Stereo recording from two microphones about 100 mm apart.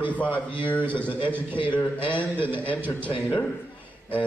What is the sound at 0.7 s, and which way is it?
Speech, 15° left (ahead or behind).